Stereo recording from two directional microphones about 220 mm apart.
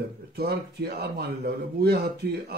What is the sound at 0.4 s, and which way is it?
Speech, 45° right (ahead or behind).